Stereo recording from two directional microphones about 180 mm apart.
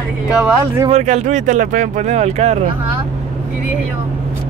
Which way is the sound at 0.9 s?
40° right (ahead or behind).